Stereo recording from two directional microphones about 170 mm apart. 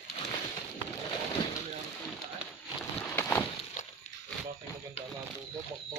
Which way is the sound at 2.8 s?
5° left (ahead or behind).